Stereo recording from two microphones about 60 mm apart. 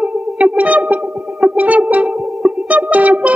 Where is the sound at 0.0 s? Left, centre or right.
Right.